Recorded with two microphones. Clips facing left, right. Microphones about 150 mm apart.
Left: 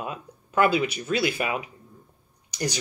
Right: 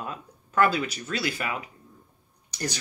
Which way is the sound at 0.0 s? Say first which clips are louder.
Left 2 dB; 15° left (ahead or behind).